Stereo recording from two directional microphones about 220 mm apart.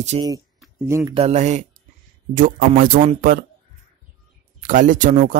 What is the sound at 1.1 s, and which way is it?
Speech, 30° right (ahead or behind).